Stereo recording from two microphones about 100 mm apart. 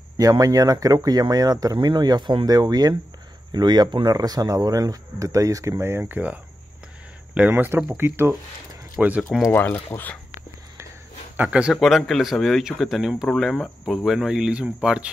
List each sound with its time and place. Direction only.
0.2 s speech: 35° right (ahead or behind)
9.0 s a man's voice: 10° right (ahead or behind)
9.5 s speech: 20° left (ahead or behind)
11.3 s a man's voice: 10° right (ahead or behind)
11.7 s speech: centre (ahead or behind)